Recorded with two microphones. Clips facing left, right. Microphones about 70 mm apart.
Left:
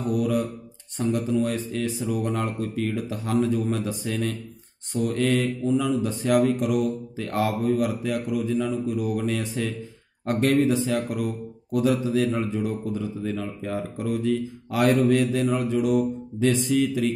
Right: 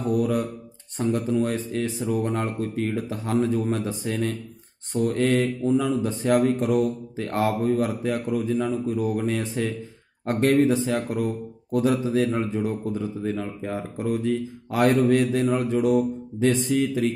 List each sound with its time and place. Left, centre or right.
0.1 s mantra: right
0.9 s speech: right